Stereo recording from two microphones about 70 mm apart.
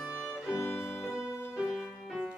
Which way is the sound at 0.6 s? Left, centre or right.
Left.